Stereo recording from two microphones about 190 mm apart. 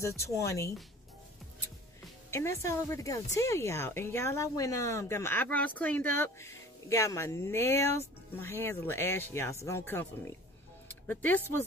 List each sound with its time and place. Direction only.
0.0 s a woman's voice: 15° left (ahead or behind)
2.3 s a woman's voice: 15° left (ahead or behind)